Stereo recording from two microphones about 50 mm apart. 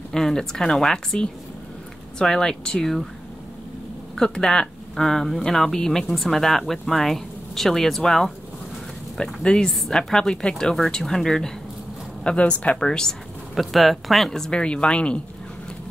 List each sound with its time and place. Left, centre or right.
0.1 s speech: centre
4.1 s speech: centre
12.4 s speech: left
12.8 s speech: centre
13.6 s speech: centre
14.5 s speech: left